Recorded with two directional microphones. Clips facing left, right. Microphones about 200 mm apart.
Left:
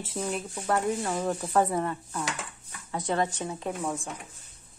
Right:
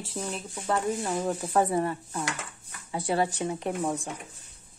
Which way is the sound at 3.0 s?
10° right (ahead or behind).